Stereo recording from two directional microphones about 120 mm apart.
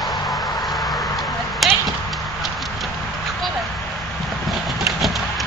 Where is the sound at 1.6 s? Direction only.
Centre (ahead or behind).